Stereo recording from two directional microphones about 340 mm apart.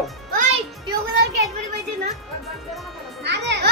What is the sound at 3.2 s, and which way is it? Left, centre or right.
Children playing, right.